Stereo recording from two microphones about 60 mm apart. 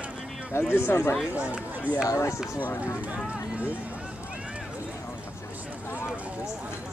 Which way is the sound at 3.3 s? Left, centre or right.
Right.